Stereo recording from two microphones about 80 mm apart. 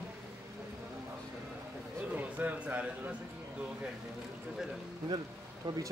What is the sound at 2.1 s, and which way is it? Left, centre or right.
A man's voice, centre.